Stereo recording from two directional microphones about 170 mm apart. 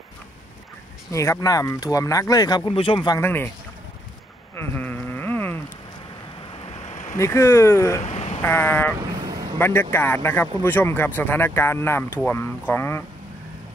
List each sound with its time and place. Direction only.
1.1 s speech: 20° left (ahead or behind)
3.2 s speech: 10° left (ahead or behind)
4.6 s a sound: 10° left (ahead or behind)
6.5 s waves: 35° left (ahead or behind)
7.2 s speech: 15° left (ahead or behind)
8.0 s a sound: 40° left (ahead or behind)
8.4 s speech: 10° left (ahead or behind)